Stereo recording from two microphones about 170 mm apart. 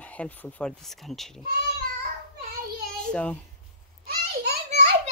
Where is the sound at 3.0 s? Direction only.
5° left (ahead or behind).